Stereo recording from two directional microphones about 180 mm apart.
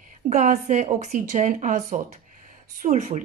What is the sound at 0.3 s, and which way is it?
A woman's voice, 40° right (ahead or behind).